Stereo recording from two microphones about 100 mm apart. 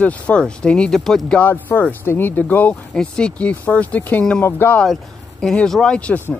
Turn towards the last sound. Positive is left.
turn(degrees=15)  # may be behind; listen again after turning